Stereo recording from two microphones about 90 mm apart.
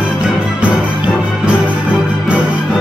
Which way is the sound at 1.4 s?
15° right (ahead or behind).